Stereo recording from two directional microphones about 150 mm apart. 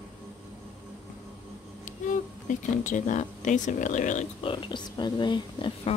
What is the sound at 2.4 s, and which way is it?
Speech, 60° left (ahead or behind).